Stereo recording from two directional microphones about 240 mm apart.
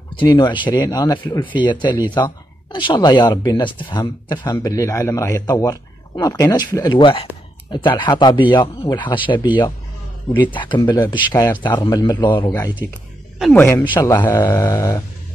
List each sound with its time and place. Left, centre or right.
0.1 s speech: centre
10.3 s speech: centre
13.9 s speech: centre